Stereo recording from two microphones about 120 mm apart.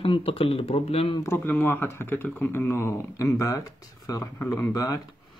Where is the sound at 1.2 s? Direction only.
15° left (ahead or behind).